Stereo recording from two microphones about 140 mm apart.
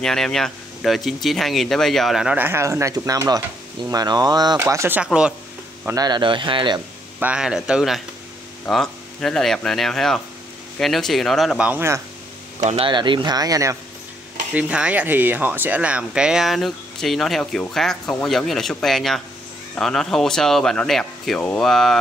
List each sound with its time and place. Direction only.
0.0 s speech: 5° left (ahead or behind)
5.9 s speech: 30° right (ahead or behind)
7.2 s speech: 10° right (ahead or behind)
12.5 s speech: 55° right (ahead or behind)
12.8 s speech: 35° right (ahead or behind)
14.5 s speech: 10° right (ahead or behind)